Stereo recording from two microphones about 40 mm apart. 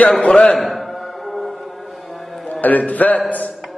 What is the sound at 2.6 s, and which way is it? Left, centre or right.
Speech, left.